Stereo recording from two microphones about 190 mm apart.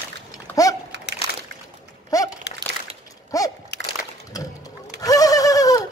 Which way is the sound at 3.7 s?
60° left (ahead or behind).